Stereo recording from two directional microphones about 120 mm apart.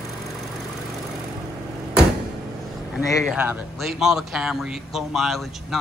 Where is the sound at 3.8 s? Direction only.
5° right (ahead or behind).